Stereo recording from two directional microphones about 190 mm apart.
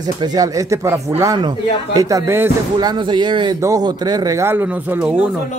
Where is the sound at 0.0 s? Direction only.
20° right (ahead or behind).